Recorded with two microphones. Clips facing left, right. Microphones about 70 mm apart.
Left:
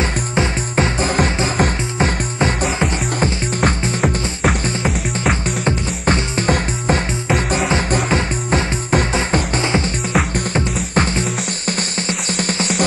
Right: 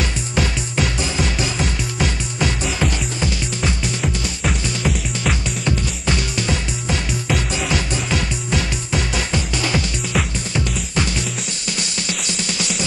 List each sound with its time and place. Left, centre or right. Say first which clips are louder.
0.0 s music: left 3 dB; left
4.8 s music: left 2 dB; left
10.1 s music: left 4 dB; left